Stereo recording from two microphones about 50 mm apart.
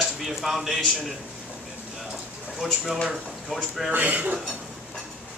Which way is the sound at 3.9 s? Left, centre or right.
Right.